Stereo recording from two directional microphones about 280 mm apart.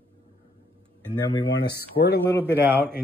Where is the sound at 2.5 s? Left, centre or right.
Centre.